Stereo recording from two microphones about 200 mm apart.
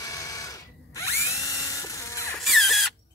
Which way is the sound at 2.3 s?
Centre (ahead or behind).